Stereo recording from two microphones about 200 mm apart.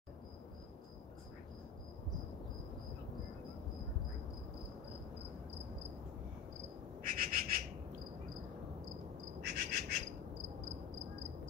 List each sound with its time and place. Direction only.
7.0 s whistle: 45° right (ahead or behind)
9.4 s bird: 55° right (ahead or behind)